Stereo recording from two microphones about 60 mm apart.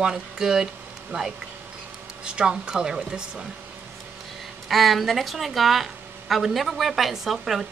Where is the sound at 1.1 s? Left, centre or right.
Right.